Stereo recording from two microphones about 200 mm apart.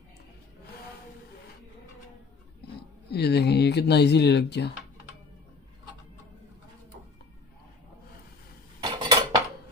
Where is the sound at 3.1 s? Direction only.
55° left (ahead or behind).